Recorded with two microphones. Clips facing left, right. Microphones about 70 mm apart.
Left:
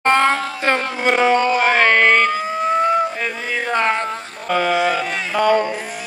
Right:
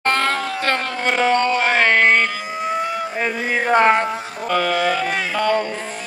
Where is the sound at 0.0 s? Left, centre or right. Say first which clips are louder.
Left 4 dB; centre.